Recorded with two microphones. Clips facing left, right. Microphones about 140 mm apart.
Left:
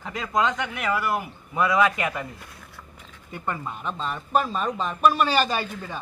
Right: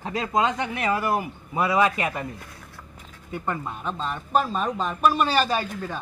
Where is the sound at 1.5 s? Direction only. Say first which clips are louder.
Even; 30° right (ahead or behind).